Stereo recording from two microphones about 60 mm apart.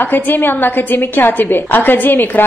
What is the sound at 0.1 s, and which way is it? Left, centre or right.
A woman's voice, left.